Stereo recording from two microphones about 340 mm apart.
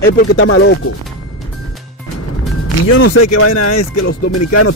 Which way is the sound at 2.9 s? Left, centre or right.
Left.